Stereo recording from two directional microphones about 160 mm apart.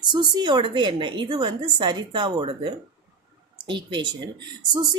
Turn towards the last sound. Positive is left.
turn(degrees=-25)  # may be behind; listen again after turning